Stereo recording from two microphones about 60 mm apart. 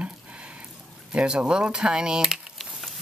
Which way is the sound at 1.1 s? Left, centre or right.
Centre.